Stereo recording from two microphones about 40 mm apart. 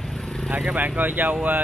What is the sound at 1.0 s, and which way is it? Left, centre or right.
Speech, right.